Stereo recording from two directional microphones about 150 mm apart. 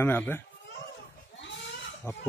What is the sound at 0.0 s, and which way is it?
Speech, 15° left (ahead or behind).